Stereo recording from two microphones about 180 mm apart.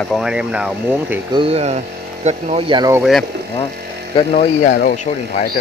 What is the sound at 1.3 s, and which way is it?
Speech, 35° right (ahead or behind).